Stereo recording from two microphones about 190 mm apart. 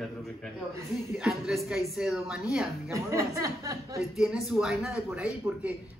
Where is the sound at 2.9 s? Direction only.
15° right (ahead or behind).